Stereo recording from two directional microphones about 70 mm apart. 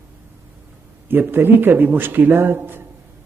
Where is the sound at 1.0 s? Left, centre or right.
Right.